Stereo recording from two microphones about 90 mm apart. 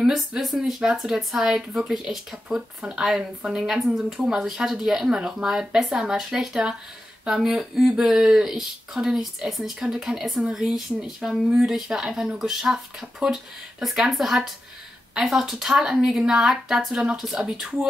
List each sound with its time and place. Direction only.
0.0 s speech: 10° right (ahead or behind)